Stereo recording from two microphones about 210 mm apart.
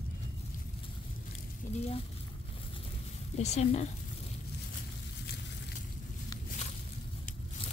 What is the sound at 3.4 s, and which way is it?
Speech, 30° left (ahead or behind).